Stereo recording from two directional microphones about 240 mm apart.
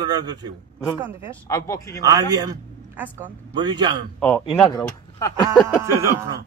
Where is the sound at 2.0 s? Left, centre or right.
Centre.